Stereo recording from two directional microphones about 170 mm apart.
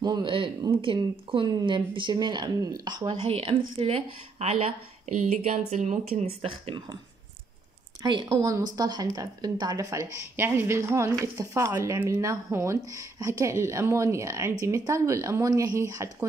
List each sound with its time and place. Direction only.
0.0 s a woman's voice: 25° right (ahead or behind)
8.0 s a woman's voice: 25° right (ahead or behind)